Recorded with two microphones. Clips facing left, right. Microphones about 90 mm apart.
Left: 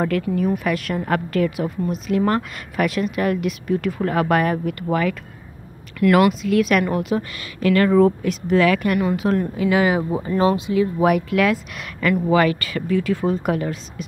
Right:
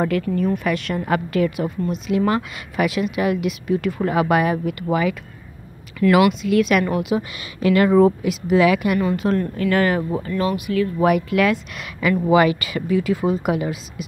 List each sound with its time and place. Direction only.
0.2 s speech: 10° left (ahead or behind); by 7.2 s 5° right (ahead or behind)
7.3 s speech: 15° right (ahead or behind)
9.0 s speech: 5° left (ahead or behind)
10.3 s speech: 30° left (ahead or behind)
11.0 s speech: centre (ahead or behind)
12.3 s speech: 15° right (ahead or behind)